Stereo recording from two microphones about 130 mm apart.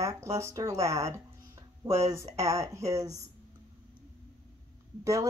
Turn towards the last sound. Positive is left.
turn(degrees=-25)  # may be behind; listen again after turning